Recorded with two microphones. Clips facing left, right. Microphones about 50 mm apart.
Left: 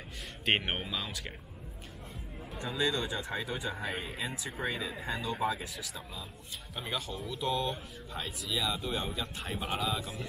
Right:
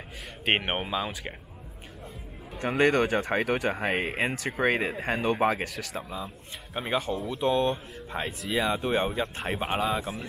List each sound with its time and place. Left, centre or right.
0.6 s speech: right
2.5 s speech: right
6.7 s speech: right